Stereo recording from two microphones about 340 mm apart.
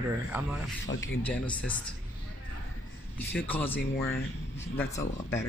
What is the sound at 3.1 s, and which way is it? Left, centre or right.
A man's voice, centre.